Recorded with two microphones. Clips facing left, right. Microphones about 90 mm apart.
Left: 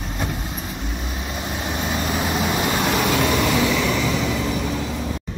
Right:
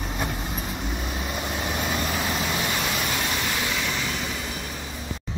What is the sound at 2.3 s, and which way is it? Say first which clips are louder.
Vehicle: left 5 dB; 35° left (ahead or behind).